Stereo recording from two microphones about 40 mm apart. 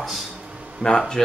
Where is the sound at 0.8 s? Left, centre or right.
Centre.